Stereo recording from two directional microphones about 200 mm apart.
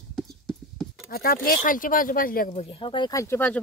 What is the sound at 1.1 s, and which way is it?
Speech, 45° left (ahead or behind).